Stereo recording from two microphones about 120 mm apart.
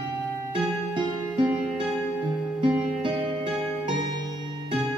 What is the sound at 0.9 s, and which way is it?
Music, 45° right (ahead or behind).